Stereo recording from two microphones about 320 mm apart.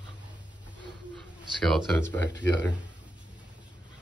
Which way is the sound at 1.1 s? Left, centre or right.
Centre.